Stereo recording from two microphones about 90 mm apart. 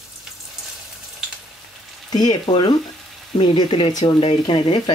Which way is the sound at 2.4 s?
60° left (ahead or behind).